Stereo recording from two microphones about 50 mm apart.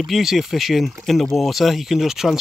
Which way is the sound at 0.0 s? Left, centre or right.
Centre.